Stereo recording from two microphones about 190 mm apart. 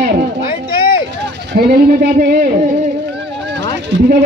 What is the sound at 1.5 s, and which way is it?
Speech, 55° right (ahead or behind).